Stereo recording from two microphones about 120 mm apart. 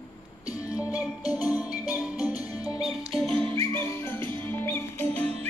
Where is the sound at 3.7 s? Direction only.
20° left (ahead or behind).